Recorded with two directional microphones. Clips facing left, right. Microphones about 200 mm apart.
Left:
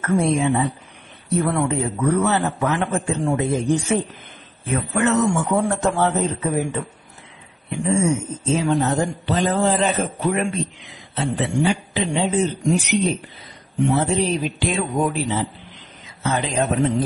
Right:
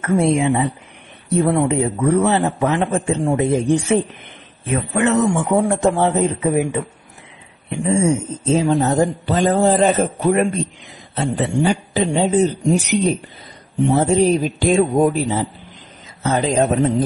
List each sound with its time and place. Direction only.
0.0 s a man's voice: 25° right (ahead or behind)
7.8 s a man's voice: 20° right (ahead or behind)
8.5 s a man's voice: 35° right (ahead or behind)